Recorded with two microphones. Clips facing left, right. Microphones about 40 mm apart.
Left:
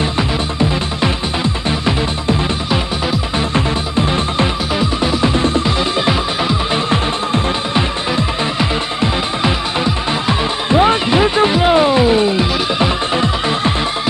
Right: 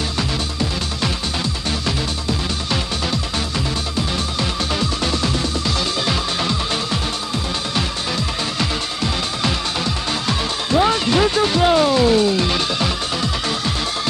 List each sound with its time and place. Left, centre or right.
0.6 s music: left
3.5 s music: left
4.7 s music: left